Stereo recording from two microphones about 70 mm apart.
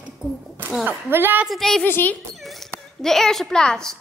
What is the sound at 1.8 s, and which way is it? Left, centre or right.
Speech, left.